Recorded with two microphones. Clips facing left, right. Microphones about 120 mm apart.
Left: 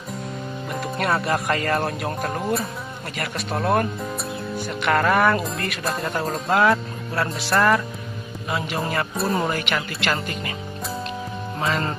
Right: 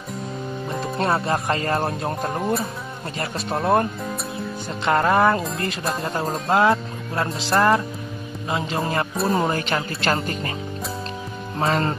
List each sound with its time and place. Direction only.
0.7 s speech: 25° right (ahead or behind)
2.4 s speech: centre (ahead or behind)
3.2 s speech: 25° right (ahead or behind)
4.8 s speech: 25° right (ahead or behind)
6.2 s speech: centre (ahead or behind)
6.5 s speech: 25° right (ahead or behind)
9.1 s speech: centre (ahead or behind)
9.4 s speech: 30° right (ahead or behind)
11.6 s speech: 35° right (ahead or behind)